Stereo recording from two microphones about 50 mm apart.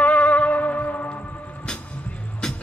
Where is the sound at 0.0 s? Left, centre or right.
Left.